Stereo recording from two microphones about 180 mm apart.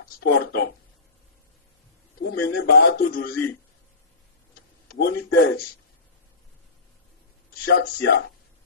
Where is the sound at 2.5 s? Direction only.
65° left (ahead or behind).